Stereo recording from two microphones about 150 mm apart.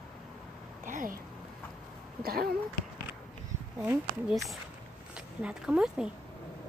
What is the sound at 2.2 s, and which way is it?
Speech, 85° right.